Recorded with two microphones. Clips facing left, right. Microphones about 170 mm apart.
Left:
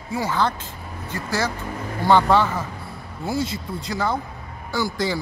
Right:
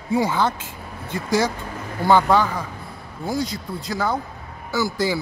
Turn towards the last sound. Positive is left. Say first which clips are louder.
# right 2 dB
turn(degrees=-5)  # may be behind; listen again after turning